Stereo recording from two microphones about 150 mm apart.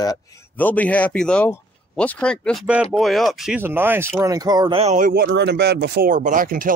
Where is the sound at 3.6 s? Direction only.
15° right (ahead or behind).